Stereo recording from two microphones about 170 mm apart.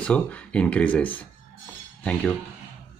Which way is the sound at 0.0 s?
5° left (ahead or behind).